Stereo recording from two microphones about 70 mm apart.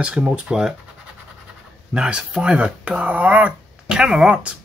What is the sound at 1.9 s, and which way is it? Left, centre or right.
Speech, centre.